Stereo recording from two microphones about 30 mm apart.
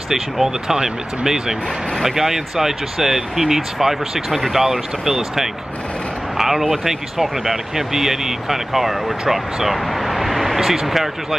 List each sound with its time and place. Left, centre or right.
0.1 s speech: centre
9.3 s a sound: centre
10.9 s speech: centre